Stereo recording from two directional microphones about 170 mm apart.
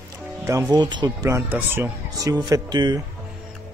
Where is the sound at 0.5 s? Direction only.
20° right (ahead or behind).